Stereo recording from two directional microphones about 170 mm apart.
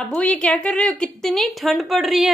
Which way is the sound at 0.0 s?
5° left (ahead or behind).